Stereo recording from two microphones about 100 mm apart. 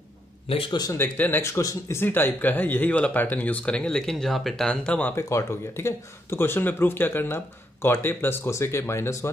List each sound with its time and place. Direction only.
0.7 s a man's voice: 45° left (ahead or behind)
0.9 s speech: 20° left (ahead or behind)
1.4 s speech: 30° left (ahead or behind); by 5.1 s 10° left (ahead or behind)
5.1 s speech: 25° left (ahead or behind)